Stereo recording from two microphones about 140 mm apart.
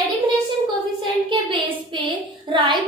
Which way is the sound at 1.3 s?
40° right (ahead or behind).